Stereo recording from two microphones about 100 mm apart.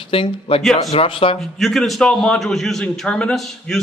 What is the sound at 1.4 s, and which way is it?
A man's voice, centre (ahead or behind).